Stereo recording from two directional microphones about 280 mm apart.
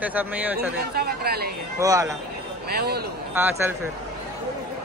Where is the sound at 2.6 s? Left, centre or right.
Right.